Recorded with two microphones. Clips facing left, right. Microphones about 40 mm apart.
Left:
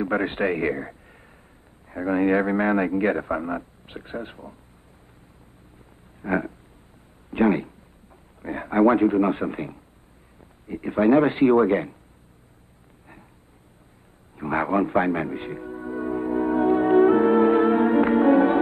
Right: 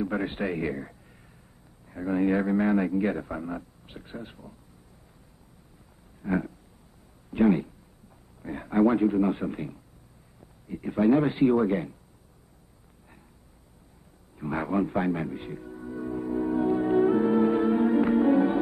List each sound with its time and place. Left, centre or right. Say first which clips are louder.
0.0 s a man's voice: left 6 dB; left
6.2 s a man's voice: left 4 dB; left
14.3 s music: left 5 dB; left